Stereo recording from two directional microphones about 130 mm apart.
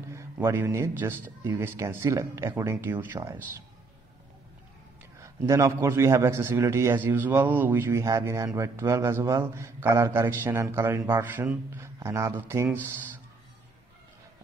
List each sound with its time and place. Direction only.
0.1 s a man's voice: 20° right (ahead or behind)
5.2 s a man's voice: 20° right (ahead or behind)